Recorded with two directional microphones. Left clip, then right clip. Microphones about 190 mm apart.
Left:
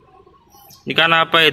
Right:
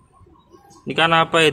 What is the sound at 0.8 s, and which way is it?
Speech, 5° right (ahead or behind).